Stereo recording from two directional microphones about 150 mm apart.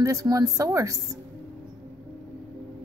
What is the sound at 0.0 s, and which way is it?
A woman's voice, 20° right (ahead or behind).